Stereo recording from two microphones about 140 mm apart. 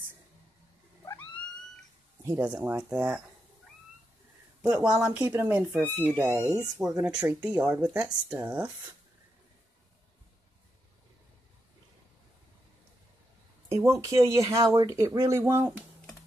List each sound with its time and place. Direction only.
2.2 s speech: 15° right (ahead or behind)
4.6 s speech: 10° right (ahead or behind)
5.2 s speech: 20° right (ahead or behind)
6.8 s speech: 5° right (ahead or behind)
13.7 s speech: 20° right (ahead or behind)